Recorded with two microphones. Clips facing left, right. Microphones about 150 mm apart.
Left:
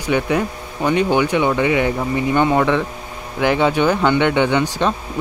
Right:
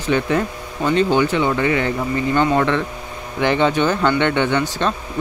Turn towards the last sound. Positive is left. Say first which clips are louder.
# left 2 dB
turn(degrees=15)  # may be behind; listen again after turning